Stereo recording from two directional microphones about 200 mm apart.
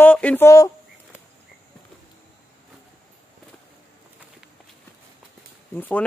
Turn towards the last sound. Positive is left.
turn(degrees=10)  # may be behind; listen again after turning